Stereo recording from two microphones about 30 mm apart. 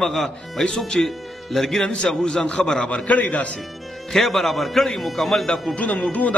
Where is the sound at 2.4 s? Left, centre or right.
Left.